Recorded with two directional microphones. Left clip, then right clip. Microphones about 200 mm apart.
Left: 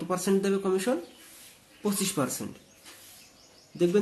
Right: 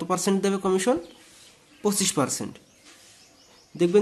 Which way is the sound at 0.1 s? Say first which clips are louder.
Right 2 dB; 40° right (ahead or behind).